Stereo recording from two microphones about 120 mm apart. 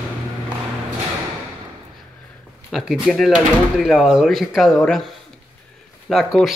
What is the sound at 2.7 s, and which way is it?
Speech, centre (ahead or behind).